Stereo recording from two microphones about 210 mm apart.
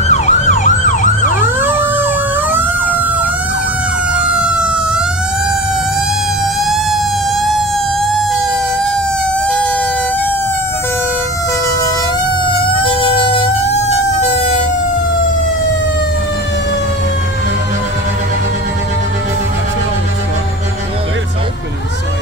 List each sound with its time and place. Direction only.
0.1 s emergency vehicle: 35° left (ahead or behind)
4.2 s emergency vehicle: 5° right (ahead or behind)
12.4 s emergency vehicle: 25° left (ahead or behind)